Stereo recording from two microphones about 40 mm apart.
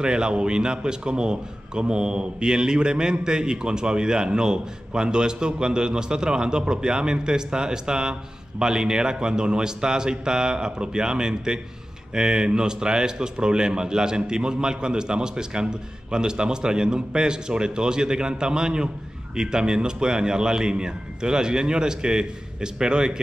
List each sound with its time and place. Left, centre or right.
0.0 s a man's voice: right